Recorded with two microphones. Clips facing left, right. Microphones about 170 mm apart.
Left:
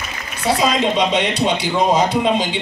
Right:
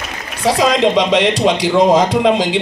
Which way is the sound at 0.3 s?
90° right.